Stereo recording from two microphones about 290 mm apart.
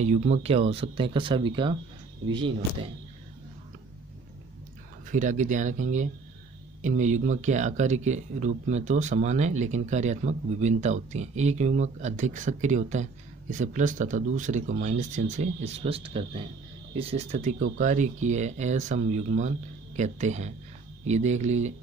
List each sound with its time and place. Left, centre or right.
0.0 s speech: right
5.1 s speech: right